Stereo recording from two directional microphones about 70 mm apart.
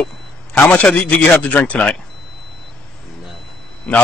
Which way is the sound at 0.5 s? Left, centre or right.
Left.